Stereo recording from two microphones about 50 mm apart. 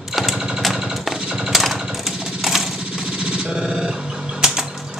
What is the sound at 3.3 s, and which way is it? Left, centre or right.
Music, centre.